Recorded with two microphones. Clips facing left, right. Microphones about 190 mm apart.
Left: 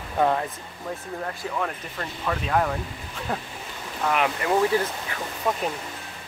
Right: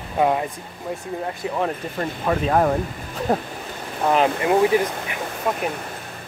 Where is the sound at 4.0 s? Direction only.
30° right (ahead or behind).